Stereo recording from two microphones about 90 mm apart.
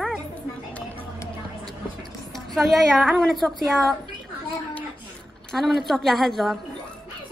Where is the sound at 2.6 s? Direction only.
Centre (ahead or behind).